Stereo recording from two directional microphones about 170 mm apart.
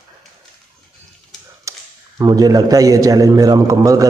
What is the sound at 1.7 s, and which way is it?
Tap, 20° right (ahead or behind).